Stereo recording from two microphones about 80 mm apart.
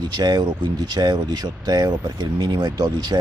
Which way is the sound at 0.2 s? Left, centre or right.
Right.